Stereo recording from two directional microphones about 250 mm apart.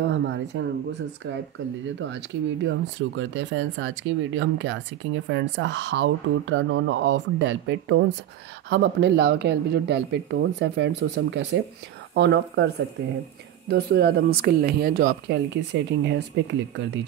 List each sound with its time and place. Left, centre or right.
0.0 s speech: right
2.0 s speech: right